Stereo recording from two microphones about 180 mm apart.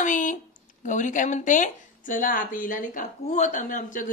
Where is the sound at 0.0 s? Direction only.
45° left (ahead or behind).